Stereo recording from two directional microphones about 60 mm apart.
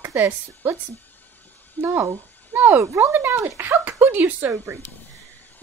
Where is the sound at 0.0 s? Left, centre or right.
Right.